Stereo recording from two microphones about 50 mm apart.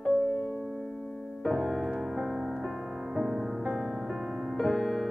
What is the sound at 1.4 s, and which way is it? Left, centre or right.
Music, centre.